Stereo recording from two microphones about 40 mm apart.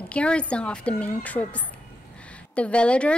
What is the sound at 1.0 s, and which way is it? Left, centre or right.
A woman's voice, left.